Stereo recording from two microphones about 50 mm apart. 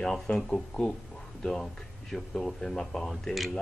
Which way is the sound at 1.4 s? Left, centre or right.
Centre.